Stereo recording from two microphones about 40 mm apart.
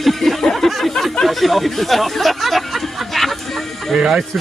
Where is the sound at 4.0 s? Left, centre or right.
Centre.